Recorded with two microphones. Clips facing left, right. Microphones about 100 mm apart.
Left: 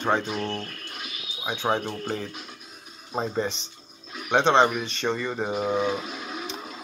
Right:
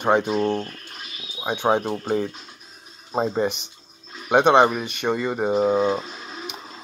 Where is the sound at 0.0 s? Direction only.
15° right (ahead or behind).